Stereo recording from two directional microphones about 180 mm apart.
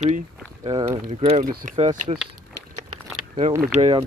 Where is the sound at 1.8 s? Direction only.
35° right (ahead or behind).